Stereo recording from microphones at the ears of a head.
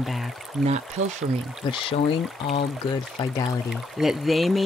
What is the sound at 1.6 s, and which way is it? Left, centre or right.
Speech, left.